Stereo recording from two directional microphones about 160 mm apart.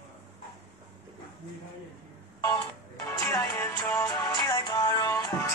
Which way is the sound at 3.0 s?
15° left (ahead or behind).